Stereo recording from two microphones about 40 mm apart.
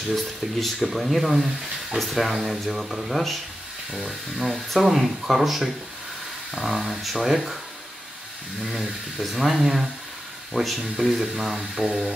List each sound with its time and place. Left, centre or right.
0.1 s speech: centre
1.3 s speech: centre
2.0 s speech: centre
4.4 s speech: centre
9.2 s speech: centre